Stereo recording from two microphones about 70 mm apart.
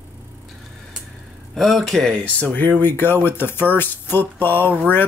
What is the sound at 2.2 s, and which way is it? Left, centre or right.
Speech, left.